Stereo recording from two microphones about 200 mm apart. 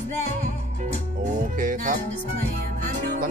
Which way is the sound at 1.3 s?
40° right (ahead or behind).